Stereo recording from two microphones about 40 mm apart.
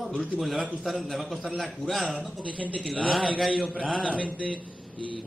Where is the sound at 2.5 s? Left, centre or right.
Right.